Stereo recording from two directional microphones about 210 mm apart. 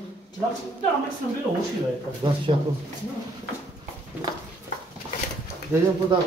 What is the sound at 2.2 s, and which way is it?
Speech, 20° right (ahead or behind).